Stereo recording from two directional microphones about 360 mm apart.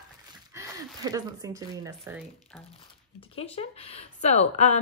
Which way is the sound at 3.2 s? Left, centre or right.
Centre.